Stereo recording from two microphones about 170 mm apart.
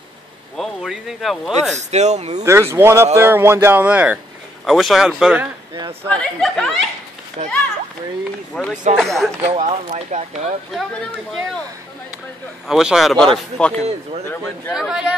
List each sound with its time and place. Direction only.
0.6 s speech: centre (ahead or behind)
1.8 s speech: 40° right (ahead or behind)
2.4 s speech: 15° right (ahead or behind); by 6.7 s 5° left (ahead or behind)
7.4 s speech: 40° right (ahead or behind)
8.5 s speech: 5° left (ahead or behind)
9.4 s speech: 35° right (ahead or behind)
10.7 s speech: centre (ahead or behind)
12.6 s speech: centre (ahead or behind)
14.7 s speech: 5° right (ahead or behind)